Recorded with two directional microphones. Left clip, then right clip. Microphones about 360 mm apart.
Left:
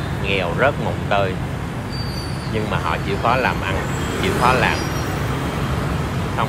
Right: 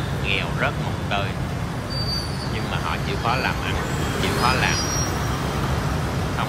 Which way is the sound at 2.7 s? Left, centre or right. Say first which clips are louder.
Left 4 dB; centre.